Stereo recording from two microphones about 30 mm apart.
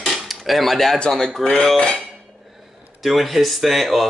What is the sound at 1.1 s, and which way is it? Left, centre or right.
Speech, centre.